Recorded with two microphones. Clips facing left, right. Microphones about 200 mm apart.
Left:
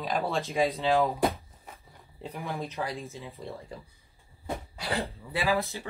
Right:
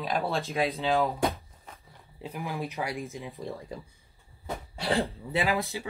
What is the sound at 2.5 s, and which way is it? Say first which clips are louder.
Speech: right 2 dB; 15° right (ahead or behind).